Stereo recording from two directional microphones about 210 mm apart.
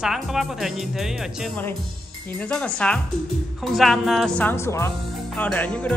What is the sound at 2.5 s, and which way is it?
Speech, 5° left (ahead or behind).